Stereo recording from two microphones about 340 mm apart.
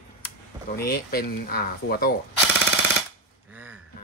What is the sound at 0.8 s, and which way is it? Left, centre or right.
Speech, left.